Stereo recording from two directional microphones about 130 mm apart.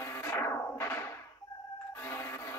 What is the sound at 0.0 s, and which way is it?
Music, 20° left (ahead or behind).